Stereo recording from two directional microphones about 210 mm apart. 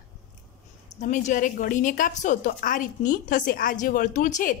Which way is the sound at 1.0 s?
40° left (ahead or behind).